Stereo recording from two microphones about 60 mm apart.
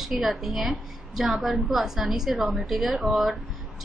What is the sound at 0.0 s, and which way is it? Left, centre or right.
A woman's voice, centre.